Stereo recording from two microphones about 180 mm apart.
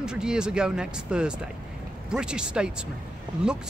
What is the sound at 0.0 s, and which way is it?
Speech, 5° right (ahead or behind).